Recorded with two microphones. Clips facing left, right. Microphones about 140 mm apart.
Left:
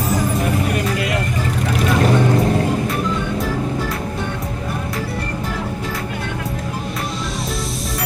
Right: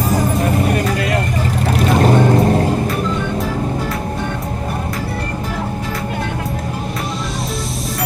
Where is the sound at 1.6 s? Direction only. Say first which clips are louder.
Right 3 dB; 35° right (ahead or behind).